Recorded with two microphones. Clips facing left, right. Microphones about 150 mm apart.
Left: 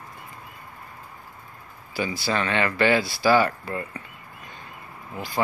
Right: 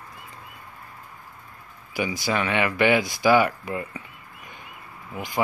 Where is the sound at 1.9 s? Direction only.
15° right (ahead or behind).